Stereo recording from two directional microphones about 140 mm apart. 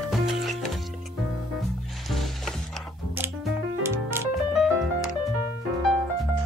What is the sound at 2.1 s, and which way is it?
Music, centre (ahead or behind).